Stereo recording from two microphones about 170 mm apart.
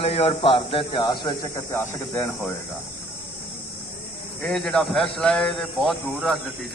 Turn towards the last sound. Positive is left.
turn(degrees=0)  # may be behind; listen again after turning